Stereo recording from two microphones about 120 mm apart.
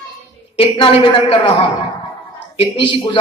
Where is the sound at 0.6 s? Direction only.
50° left (ahead or behind).